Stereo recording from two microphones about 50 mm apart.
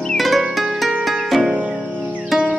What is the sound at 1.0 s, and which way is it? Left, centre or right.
Harp, centre.